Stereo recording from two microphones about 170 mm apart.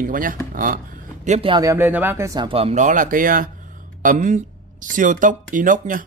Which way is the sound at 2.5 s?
35° right (ahead or behind).